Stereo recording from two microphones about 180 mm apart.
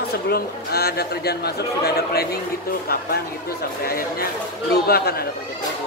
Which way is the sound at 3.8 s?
55° left (ahead or behind).